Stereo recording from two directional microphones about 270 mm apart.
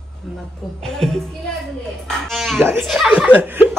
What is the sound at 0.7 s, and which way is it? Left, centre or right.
Speech, centre.